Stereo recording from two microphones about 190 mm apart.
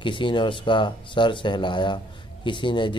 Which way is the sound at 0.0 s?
25° left (ahead or behind).